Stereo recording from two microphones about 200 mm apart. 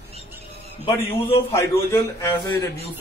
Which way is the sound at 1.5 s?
15° left (ahead or behind).